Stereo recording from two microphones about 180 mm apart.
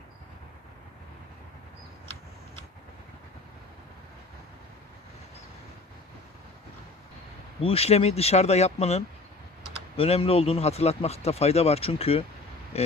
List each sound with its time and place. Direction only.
7.6 s speech: 35° left (ahead or behind)